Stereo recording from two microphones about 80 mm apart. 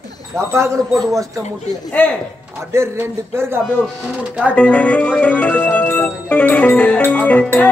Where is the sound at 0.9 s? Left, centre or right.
Right.